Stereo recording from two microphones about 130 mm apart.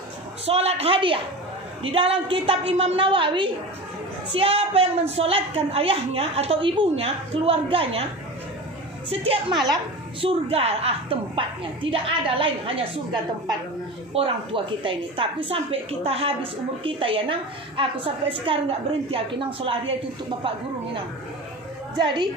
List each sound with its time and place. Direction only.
0.5 s a woman's voice: 50° right (ahead or behind)
9.1 s a woman's voice: 45° right (ahead or behind)
14.1 s a woman's voice: 45° right (ahead or behind)
21.9 s a woman's voice: 35° right (ahead or behind)